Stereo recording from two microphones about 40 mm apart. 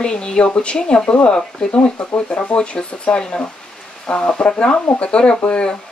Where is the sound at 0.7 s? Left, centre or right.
Centre.